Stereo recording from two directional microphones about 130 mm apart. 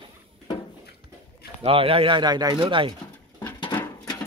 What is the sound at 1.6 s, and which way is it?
Speech, 45° right (ahead or behind).